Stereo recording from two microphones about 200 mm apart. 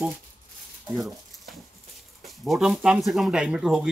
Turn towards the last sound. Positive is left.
turn(degrees=-5)  # may be behind; listen again after turning